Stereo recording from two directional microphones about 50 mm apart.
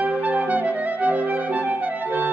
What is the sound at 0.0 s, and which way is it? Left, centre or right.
Clarinet, right.